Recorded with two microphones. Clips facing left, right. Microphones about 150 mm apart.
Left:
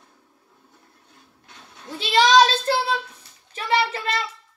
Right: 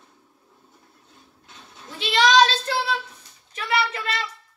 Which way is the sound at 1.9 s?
30° left (ahead or behind).